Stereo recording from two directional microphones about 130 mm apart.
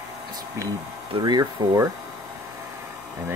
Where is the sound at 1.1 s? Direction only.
30° right (ahead or behind).